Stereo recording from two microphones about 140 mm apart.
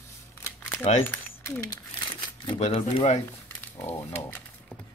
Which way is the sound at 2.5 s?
45° left (ahead or behind).